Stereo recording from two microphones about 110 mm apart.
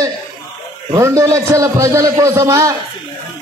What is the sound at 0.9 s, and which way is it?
A man's voice, 30° right (ahead or behind).